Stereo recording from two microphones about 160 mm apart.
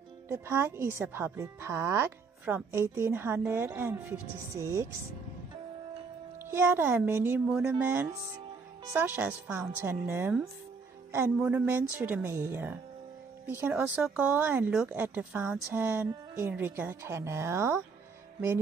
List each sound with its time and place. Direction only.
0.3 s speech: 15° right (ahead or behind)
6.4 s speech: 15° right (ahead or behind)